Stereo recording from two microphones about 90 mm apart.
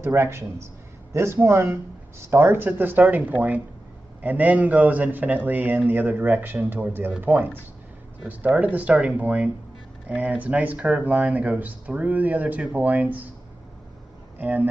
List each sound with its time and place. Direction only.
0.0 s a man's voice: 25° right (ahead or behind)
14.4 s speech: 20° right (ahead or behind)